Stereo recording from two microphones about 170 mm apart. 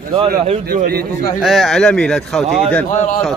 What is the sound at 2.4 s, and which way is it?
Speech, 40° right (ahead or behind).